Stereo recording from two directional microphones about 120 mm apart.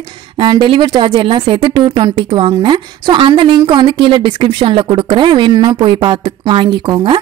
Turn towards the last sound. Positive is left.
turn(degrees=-40)  # may be behind; listen again after turning